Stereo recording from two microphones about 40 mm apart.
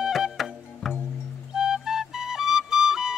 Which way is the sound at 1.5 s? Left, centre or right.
Centre.